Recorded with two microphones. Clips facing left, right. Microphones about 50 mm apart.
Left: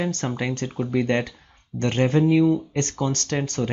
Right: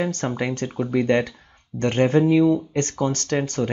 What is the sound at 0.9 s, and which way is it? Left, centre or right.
Speech, right.